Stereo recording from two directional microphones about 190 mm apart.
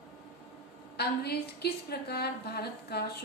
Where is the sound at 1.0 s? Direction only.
55° left (ahead or behind).